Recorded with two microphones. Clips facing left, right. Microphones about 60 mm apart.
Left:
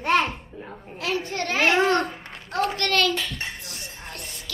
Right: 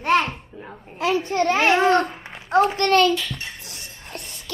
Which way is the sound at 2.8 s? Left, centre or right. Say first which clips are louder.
Right 6 dB; right.